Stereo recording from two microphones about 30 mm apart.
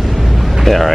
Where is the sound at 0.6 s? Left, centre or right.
Centre.